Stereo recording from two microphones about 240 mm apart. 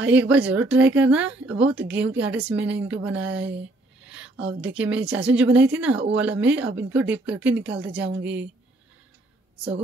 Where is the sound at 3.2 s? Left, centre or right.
Right.